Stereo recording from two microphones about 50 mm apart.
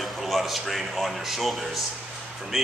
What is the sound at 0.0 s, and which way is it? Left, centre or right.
Speech, centre.